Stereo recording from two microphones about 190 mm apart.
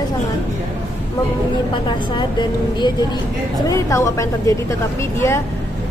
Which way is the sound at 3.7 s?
15° left (ahead or behind).